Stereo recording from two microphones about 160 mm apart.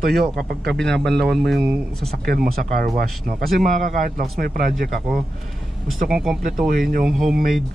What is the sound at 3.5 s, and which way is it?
Speech, 55° right (ahead or behind).